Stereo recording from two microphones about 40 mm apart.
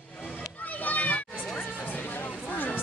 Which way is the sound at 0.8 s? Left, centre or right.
Left.